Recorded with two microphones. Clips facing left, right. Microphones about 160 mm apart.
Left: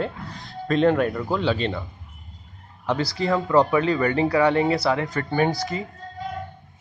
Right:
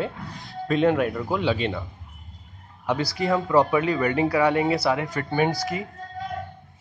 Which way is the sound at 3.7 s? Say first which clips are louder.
Left 1 dB; 20° right (ahead or behind).